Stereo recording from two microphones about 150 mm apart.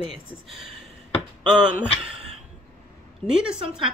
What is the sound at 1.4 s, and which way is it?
Speech, 5° right (ahead or behind).